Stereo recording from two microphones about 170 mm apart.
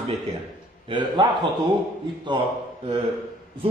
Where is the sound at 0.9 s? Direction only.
30° right (ahead or behind).